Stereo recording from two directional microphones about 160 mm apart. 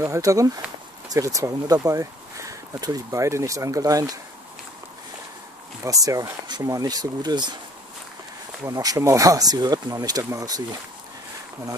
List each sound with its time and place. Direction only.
0.0 s speech: 20° right (ahead or behind)
5.9 s speech: 20° right (ahead or behind)
8.6 s speech: 20° right (ahead or behind)